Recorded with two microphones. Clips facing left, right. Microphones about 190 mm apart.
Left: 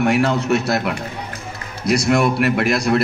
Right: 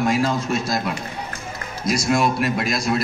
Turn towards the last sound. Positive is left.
turn(degrees=65)  # may be behind; listen again after turning